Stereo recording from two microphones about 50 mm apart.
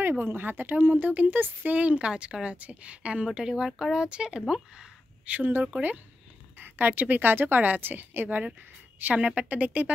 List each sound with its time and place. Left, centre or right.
0.2 s speech: right; by 4.4 s centre
5.2 s speech: right
9.0 s speech: right